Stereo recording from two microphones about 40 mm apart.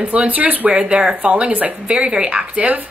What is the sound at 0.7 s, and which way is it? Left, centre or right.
Speech, right.